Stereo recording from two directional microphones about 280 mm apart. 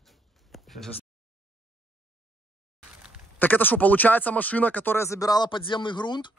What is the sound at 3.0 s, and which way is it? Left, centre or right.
Speech, centre.